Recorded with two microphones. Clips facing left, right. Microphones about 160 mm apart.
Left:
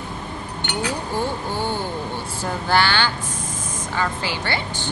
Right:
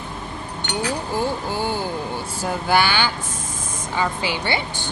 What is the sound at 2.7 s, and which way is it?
A woman's voice, 15° right (ahead or behind).